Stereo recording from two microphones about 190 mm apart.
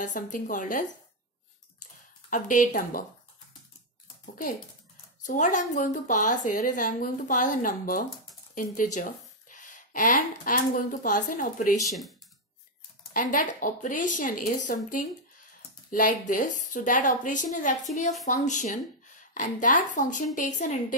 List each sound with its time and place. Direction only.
0.0 s a woman's voice: 40° left (ahead or behind)
2.2 s a woman's voice: 45° left (ahead or behind)
5.2 s a woman's voice: 40° left (ahead or behind)
13.1 s a woman's voice: 45° left (ahead or behind)